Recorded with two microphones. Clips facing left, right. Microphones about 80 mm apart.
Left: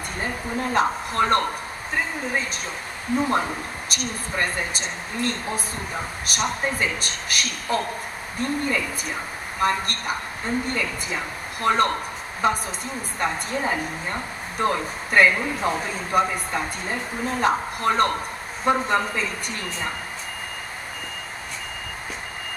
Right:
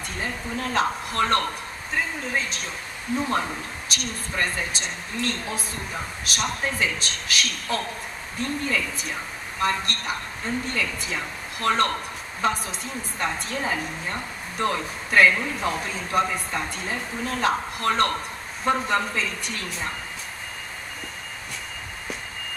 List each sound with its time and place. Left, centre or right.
0.6 s a woman's voice: centre